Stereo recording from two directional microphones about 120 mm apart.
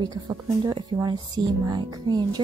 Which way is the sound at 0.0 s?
35° right (ahead or behind).